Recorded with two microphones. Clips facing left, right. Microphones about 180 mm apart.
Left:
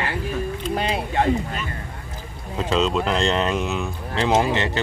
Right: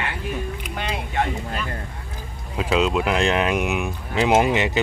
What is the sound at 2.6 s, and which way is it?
Speech, 10° right (ahead or behind).